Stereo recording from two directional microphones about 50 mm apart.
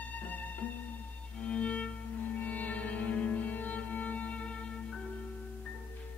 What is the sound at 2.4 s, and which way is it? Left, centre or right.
Music, left.